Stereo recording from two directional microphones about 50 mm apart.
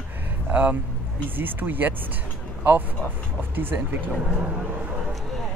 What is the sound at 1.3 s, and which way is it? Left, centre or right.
Speech, right.